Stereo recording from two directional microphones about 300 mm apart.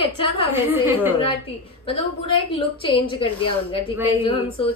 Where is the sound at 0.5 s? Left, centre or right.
Centre.